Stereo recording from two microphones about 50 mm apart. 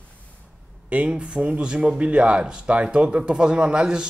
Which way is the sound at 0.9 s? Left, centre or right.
Right.